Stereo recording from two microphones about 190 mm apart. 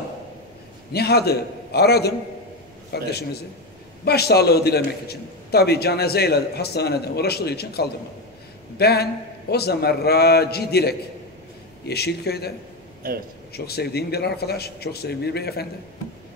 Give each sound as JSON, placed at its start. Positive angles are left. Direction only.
{"t": 0.9, "sound": "a man's voice", "side_deg": 55}
{"t": 13.0, "sound": "speech", "side_deg": -50}
{"t": 13.5, "sound": "a man's voice", "side_deg": 55}